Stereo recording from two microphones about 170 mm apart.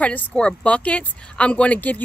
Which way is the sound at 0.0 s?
5° left (ahead or behind).